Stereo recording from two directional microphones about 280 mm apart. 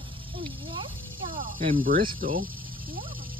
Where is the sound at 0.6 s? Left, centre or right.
Centre.